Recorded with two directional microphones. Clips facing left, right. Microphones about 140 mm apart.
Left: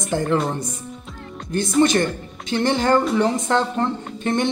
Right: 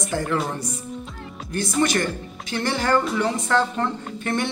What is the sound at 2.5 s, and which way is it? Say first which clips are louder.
Speech: left 4 dB; 20° left (ahead or behind).